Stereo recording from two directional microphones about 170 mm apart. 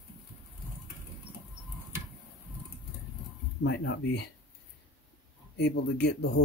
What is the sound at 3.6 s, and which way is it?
Speech, 90° left.